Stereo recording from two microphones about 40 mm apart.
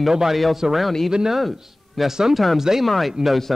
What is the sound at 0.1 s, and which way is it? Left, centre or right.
Speech, centre.